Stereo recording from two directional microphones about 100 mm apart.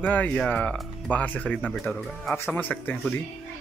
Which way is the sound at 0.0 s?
15° left (ahead or behind).